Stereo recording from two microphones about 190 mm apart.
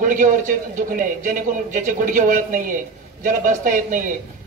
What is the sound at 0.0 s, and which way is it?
A man's voice, 45° right (ahead or behind).